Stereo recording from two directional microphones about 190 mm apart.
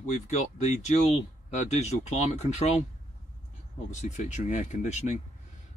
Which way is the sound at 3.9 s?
40° left (ahead or behind).